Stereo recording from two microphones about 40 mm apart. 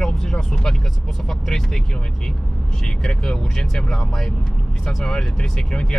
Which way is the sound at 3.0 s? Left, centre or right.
Centre.